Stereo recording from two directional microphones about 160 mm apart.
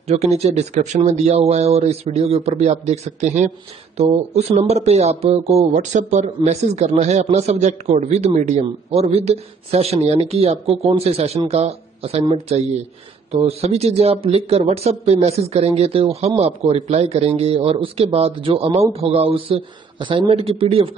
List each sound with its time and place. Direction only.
0.1 s speech: 40° right (ahead or behind)